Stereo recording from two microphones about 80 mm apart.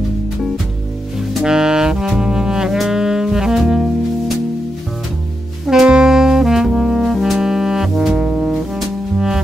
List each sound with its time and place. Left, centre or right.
1.4 s music: centre
5.7 s music: centre